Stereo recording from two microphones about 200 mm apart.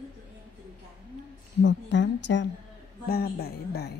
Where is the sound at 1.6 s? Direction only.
65° left (ahead or behind).